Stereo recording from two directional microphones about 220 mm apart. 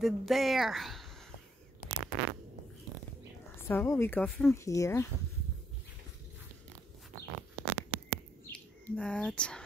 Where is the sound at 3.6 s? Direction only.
10° left (ahead or behind).